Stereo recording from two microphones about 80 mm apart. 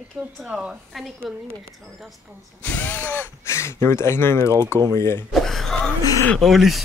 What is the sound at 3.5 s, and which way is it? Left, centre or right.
Speech, left.